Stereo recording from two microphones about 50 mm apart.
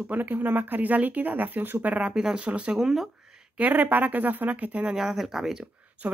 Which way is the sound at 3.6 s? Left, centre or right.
Right.